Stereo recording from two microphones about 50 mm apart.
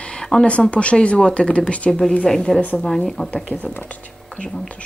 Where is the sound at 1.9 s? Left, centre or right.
Centre.